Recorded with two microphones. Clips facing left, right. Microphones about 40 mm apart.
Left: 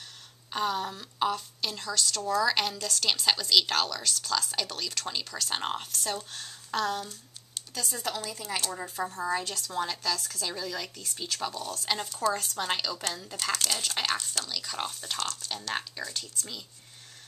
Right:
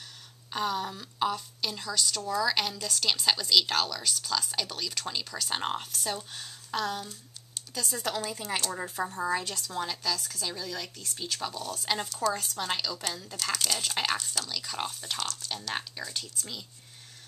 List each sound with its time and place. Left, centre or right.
0.5 s a woman's voice: centre
7.5 s computer keyboard: centre
8.1 s speech: centre
8.7 s a woman's voice: centre
12.1 s a woman's voice: centre